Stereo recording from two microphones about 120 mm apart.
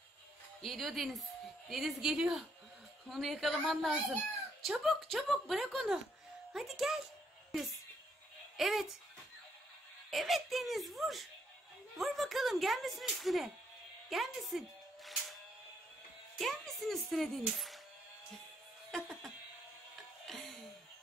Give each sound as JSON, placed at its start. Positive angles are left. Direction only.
{"t": 0.6, "sound": "a woman's voice", "side_deg": 0}
{"t": 8.5, "sound": "speech", "side_deg": 0}
{"t": 10.1, "sound": "speech", "side_deg": 0}
{"t": 16.3, "sound": "speech", "side_deg": 0}
{"t": 18.9, "sound": "a sound", "side_deg": 5}